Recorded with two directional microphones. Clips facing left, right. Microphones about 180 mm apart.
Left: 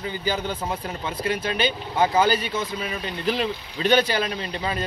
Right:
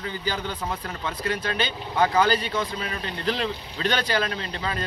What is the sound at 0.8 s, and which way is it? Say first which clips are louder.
Speech: left 2 dB; 25° left (ahead or behind).